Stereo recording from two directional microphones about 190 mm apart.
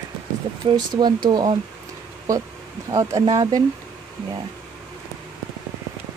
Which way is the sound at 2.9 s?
15° right (ahead or behind).